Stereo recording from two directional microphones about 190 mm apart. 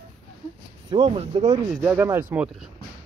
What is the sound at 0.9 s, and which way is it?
Speech, 30° right (ahead or behind).